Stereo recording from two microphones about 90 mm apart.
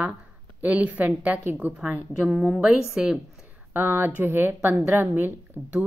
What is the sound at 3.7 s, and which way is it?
A woman's voice, 20° right (ahead or behind).